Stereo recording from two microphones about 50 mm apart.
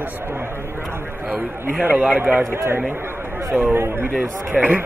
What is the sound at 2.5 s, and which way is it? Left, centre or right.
Speech, right.